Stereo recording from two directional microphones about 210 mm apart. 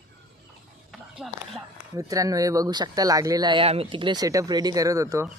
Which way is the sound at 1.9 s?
15° right (ahead or behind).